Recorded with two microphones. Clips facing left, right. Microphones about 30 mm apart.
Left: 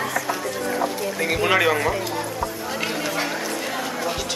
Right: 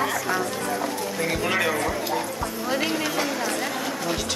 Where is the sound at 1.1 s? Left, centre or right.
Left.